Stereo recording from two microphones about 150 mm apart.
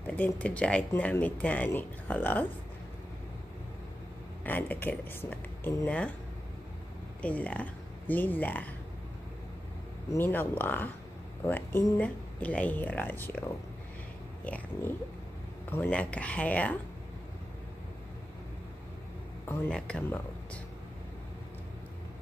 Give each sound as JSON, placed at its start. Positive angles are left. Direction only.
{"t": 0.0, "sound": "a sound", "side_deg": 10}
{"t": 0.4, "sound": "speech", "side_deg": 10}
{"t": 4.5, "sound": "speech", "side_deg": 10}
{"t": 7.2, "sound": "speech", "side_deg": 10}
{"t": 10.1, "sound": "speech", "side_deg": 15}
{"t": 19.7, "sound": "speech", "side_deg": 5}